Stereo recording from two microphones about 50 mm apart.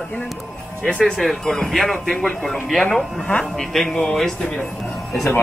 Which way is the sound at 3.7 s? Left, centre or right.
Centre.